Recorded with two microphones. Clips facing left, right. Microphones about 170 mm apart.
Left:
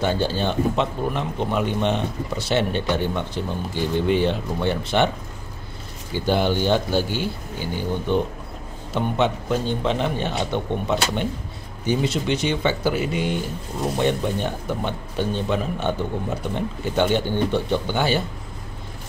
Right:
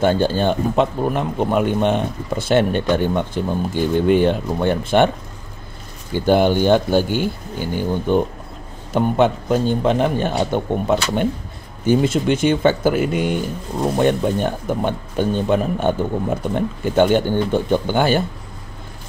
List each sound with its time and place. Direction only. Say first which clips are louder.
0.0 s speech: right 6 dB; 50° right (ahead or behind)
6.1 s speech: right 6 dB; 50° right (ahead or behind)